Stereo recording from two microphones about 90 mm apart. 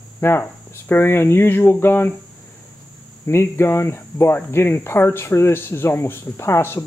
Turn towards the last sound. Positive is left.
turn(degrees=25)  # may be behind; listen again after turning